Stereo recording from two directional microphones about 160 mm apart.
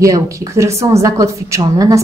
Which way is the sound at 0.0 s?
20° right (ahead or behind).